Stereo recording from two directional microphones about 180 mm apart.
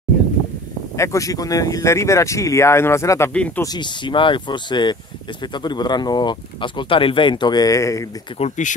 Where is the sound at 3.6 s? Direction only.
25° left (ahead or behind).